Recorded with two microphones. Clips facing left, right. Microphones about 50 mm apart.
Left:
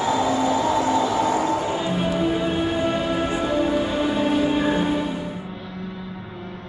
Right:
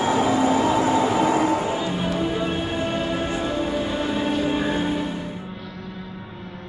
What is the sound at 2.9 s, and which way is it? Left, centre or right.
Music, left.